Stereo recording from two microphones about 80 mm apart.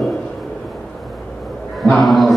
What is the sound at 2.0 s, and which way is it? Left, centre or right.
Mantra, centre.